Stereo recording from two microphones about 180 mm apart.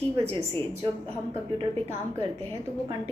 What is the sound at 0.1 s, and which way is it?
Speech, 35° right (ahead or behind).